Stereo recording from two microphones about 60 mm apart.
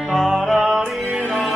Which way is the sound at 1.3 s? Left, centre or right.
Centre.